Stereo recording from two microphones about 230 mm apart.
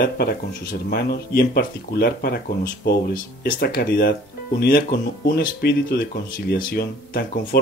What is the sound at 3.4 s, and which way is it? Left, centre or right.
Speech, left.